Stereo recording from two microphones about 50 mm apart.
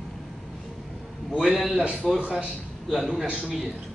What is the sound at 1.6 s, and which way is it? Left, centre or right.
Speech, centre.